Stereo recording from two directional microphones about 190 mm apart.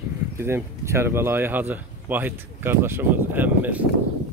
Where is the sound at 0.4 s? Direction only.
15° right (ahead or behind).